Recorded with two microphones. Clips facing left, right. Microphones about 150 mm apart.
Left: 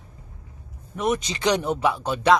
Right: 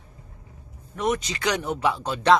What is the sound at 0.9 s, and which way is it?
Speech, 10° left (ahead or behind).